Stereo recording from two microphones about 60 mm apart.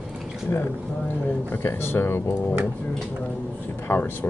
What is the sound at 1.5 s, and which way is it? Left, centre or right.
Speech, left.